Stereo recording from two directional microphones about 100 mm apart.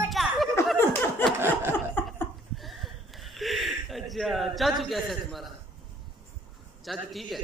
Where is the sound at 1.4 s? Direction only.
25° right (ahead or behind).